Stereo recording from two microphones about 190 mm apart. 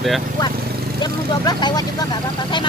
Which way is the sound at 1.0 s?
20° left (ahead or behind).